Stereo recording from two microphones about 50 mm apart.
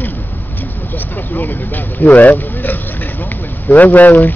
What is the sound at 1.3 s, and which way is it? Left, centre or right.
Speech, left.